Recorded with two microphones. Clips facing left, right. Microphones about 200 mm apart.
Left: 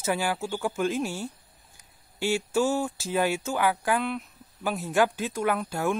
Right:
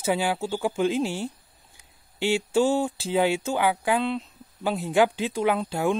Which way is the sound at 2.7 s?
20° right (ahead or behind).